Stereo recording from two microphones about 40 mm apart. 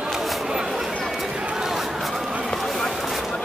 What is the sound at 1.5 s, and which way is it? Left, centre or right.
Chatter, centre.